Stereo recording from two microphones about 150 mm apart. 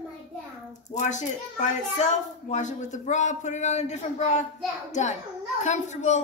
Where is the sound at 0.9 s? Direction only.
55° left (ahead or behind).